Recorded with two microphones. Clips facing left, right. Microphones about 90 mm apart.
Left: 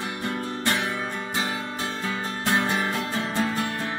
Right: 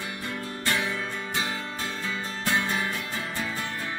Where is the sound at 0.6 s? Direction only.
20° left (ahead or behind).